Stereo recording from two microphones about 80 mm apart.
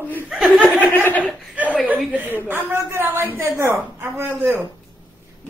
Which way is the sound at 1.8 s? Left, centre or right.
Right.